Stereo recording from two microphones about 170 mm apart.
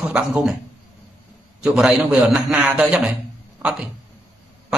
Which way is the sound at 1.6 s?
5° right (ahead or behind).